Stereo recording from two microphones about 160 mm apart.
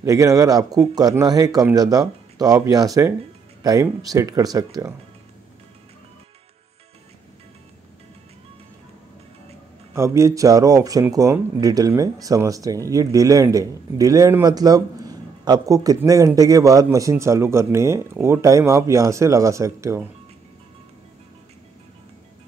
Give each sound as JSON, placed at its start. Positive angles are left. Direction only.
{"t": 0.0, "sound": "speech", "side_deg": -20}
{"t": 9.9, "sound": "speech", "side_deg": -15}